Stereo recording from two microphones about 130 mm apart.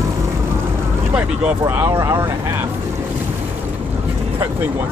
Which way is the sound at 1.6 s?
20° right (ahead or behind).